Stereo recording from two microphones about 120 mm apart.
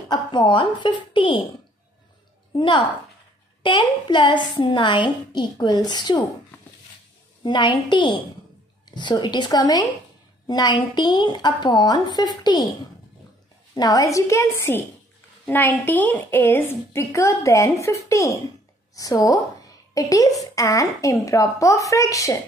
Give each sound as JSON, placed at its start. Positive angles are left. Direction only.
{"t": 0.1, "sound": "a woman's voice", "side_deg": 40}
{"t": 2.5, "sound": "a woman's voice", "side_deg": 45}
{"t": 7.4, "sound": "a woman's voice", "side_deg": 40}
{"t": 13.7, "sound": "a woman's voice", "side_deg": 30}